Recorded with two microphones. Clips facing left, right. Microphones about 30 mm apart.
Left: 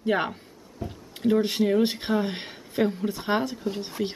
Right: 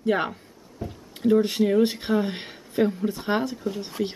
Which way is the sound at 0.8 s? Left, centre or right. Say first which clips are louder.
Right 1 dB; centre.